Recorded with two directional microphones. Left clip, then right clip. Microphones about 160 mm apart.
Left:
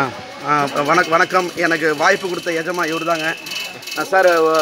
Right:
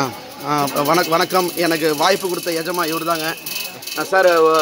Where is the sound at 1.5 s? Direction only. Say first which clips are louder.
Left 1 dB; 40° right (ahead or behind).